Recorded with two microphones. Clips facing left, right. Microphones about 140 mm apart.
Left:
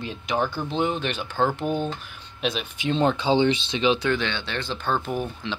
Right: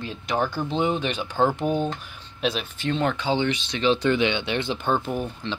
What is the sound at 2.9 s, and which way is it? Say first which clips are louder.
Speech: left 3 dB; 20° left (ahead or behind).